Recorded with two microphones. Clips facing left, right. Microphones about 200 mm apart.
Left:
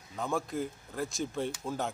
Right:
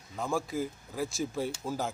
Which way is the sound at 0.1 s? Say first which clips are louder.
Right 1 dB; centre (ahead or behind).